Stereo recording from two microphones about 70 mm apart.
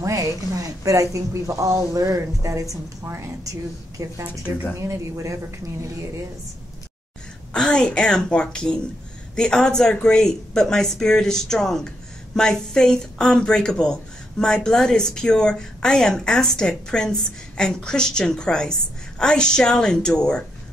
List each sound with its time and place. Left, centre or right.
0.0 s speech: right
4.0 s speech: right
7.5 s speech: centre